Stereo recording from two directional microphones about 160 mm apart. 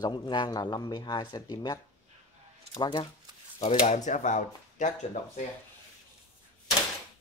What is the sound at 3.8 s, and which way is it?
Speech, 50° left (ahead or behind).